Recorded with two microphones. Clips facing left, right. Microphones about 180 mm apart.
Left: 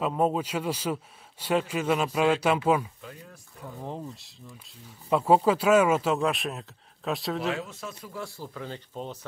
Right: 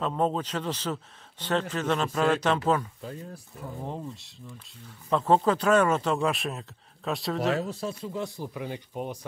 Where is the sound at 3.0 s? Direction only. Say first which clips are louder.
Right 6 dB; 35° right (ahead or behind).